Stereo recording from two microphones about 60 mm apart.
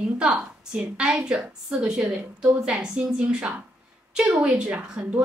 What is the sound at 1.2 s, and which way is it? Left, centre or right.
A woman's voice, centre.